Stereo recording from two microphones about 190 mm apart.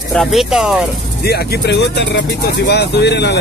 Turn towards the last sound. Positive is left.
turn(degrees=60)  # may be behind; listen again after turning